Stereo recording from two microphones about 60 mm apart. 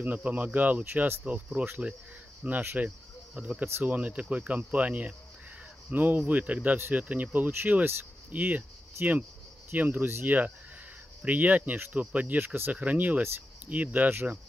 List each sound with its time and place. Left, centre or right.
0.0 s speech: right
9.7 s speech: right